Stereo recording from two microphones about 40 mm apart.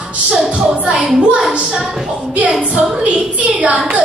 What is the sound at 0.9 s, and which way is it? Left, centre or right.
A woman's voice, right.